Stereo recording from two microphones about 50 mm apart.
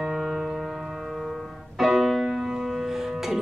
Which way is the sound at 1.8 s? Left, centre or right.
Centre.